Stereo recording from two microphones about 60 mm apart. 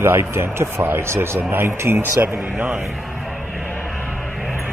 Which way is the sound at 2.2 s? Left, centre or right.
Right.